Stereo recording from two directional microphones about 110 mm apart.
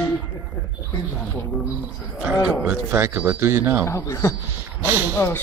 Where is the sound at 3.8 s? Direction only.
30° left (ahead or behind).